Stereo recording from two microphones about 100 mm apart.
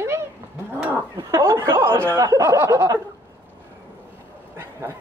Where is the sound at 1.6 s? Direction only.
25° right (ahead or behind).